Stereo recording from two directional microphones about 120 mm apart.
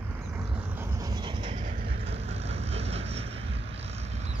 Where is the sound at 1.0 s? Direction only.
40° right (ahead or behind).